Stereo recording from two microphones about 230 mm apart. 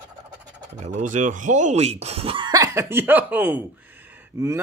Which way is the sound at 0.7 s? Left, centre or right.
Right.